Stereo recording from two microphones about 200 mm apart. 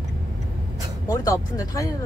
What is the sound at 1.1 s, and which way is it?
Speech, 15° left (ahead or behind).